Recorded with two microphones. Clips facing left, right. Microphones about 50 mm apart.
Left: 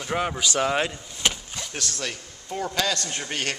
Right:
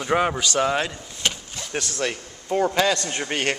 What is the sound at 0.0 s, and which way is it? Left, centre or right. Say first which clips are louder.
Speech: right 5 dB; centre.